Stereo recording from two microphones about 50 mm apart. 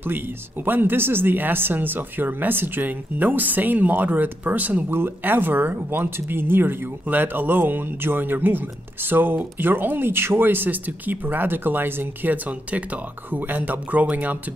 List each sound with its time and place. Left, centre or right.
0.0 s speech: right
4.8 s speech: right